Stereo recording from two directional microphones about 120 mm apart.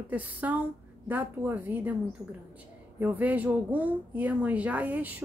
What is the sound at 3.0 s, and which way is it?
Speech, 15° right (ahead or behind).